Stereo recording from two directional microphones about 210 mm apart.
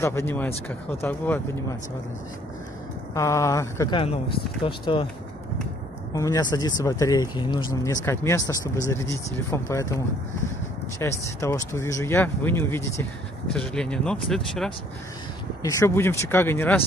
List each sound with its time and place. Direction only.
0.0 s speech: 10° left (ahead or behind)
3.2 s speech: 15° left (ahead or behind)
6.1 s speech: 15° left (ahead or behind)
15.6 s speech: 15° left (ahead or behind)